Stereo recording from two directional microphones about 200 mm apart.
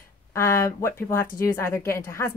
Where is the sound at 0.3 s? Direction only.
15° left (ahead or behind).